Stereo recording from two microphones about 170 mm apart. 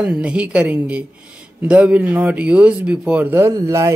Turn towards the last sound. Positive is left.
turn(degrees=-20)  # may be behind; listen again after turning